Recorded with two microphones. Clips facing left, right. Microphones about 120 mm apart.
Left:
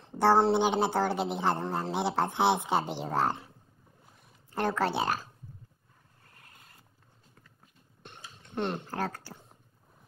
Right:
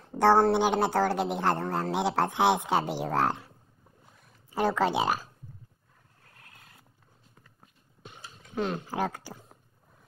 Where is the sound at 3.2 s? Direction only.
10° right (ahead or behind).